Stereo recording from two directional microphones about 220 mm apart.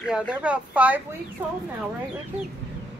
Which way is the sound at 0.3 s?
5° right (ahead or behind).